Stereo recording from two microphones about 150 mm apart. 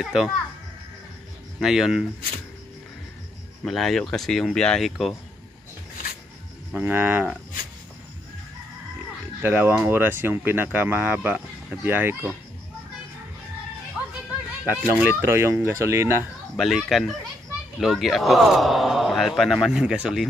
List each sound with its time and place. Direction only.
0.0 s speech: 5° right (ahead or behind)
1.6 s speech: 5° right (ahead or behind)
3.6 s speech: centre (ahead or behind)
6.7 s speech: 15° right (ahead or behind)
9.4 s speech: 15° right (ahead or behind)
14.7 s speech: 10° right (ahead or behind)
16.5 s speech: centre (ahead or behind)